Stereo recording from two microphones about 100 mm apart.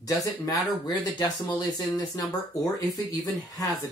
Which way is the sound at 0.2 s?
40° left (ahead or behind).